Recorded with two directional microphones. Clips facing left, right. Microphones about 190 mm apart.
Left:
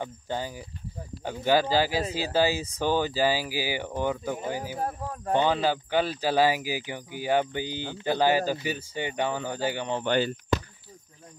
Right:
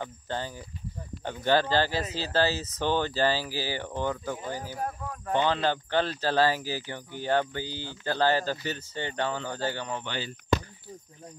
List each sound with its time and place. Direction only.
0.0 s speech: 10° left (ahead or behind)
4.7 s speech: 30° left (ahead or behind)
5.3 s speech: 15° left (ahead or behind)
10.0 s speech: 55° left (ahead or behind)